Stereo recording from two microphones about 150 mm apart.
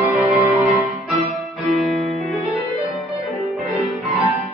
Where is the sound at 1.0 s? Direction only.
Centre (ahead or behind).